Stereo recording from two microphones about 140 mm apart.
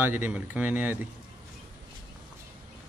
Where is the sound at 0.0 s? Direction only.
15° right (ahead or behind).